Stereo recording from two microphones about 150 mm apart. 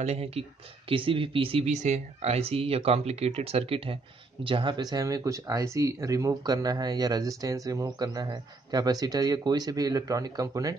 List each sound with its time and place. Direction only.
0.0 s speech: 45° right (ahead or behind); by 10.8 s 20° right (ahead or behind)